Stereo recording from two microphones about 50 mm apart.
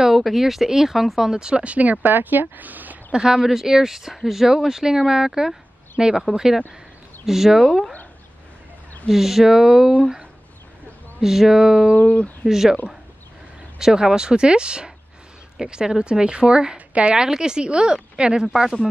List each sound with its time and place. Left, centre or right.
0.0 s speech: centre; by 3.0 s right
3.1 s speech: centre
9.1 s speech: centre
11.1 s speech: centre
11.9 s speech: left
12.4 s speech: centre
13.7 s speech: centre